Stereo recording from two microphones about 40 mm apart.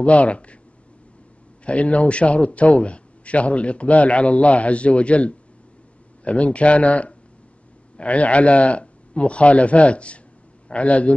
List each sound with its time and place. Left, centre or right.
0.0 s a man's voice: left
1.7 s a man's voice: left